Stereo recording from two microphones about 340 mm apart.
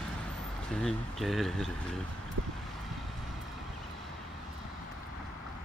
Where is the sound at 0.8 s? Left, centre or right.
Centre.